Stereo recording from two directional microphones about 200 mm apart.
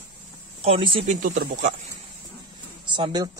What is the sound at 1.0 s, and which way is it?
Speech, 40° right (ahead or behind).